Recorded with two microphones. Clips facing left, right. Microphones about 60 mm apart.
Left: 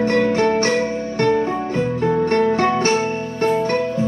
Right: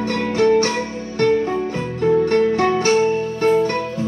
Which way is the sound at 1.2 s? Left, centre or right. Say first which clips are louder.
Right 1 dB; centre.